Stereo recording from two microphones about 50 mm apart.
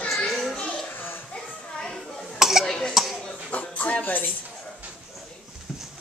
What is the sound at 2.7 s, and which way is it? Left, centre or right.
Cough, centre.